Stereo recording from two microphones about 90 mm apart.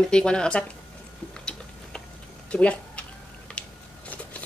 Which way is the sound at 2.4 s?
15° left (ahead or behind).